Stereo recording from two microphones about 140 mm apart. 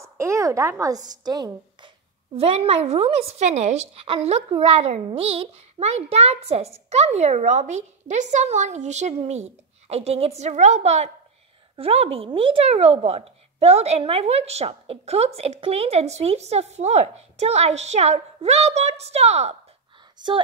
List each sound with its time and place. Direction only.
0.0 s a woman's voice: 20° right (ahead or behind)
2.3 s a woman's voice: 45° right (ahead or behind)